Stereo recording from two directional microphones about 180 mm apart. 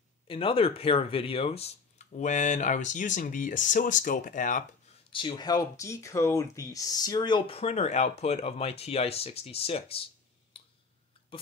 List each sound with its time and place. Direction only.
0.3 s speech: 30° left (ahead or behind); by 4.6 s 45° left (ahead or behind)
5.1 s speech: 25° left (ahead or behind)
10.5 s a sound: 30° left (ahead or behind)